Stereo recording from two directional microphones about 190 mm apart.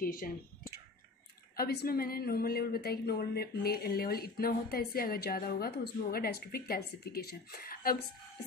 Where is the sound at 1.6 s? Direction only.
55° left (ahead or behind).